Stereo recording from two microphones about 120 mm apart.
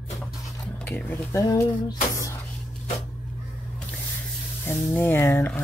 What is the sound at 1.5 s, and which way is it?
Music, 30° left (ahead or behind).